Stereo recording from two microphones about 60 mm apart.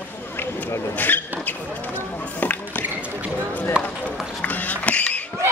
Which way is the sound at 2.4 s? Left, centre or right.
Left.